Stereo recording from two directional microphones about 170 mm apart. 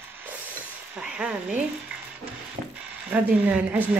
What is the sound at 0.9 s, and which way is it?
Speech, 5° right (ahead or behind).